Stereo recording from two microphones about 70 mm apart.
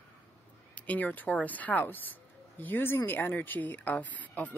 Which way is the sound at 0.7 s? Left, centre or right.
Left.